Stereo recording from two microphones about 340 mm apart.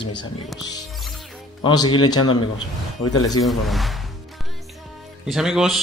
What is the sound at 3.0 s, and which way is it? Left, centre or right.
Speech, left.